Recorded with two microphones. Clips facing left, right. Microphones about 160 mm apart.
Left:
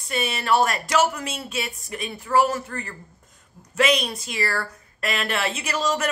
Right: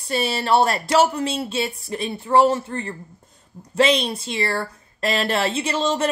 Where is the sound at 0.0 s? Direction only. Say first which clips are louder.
Right 4 dB; 30° right (ahead or behind).